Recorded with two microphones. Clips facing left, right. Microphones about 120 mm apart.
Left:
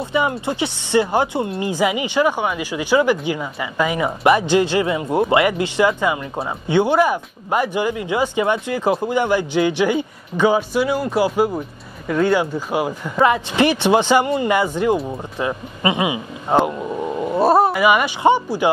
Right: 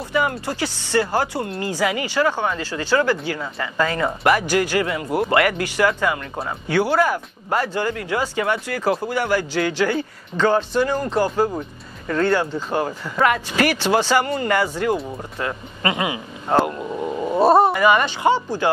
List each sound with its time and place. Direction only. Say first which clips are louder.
0.0 s speech: left 2 dB; 20° left (ahead or behind)
17.3 s dog: right 1 dB; centre (ahead or behind)
17.8 s speech: left 2 dB; 10° left (ahead or behind)